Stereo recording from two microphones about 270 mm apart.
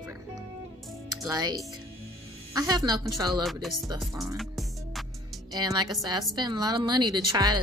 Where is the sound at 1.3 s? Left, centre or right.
Centre.